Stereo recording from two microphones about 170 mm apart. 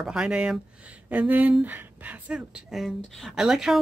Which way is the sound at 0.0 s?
5° right (ahead or behind).